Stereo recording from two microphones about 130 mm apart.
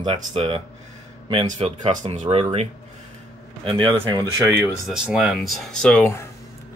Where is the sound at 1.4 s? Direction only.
65° right (ahead or behind).